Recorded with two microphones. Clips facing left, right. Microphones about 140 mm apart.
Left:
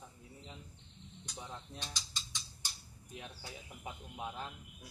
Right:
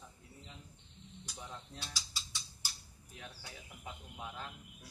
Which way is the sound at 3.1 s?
20° left (ahead or behind).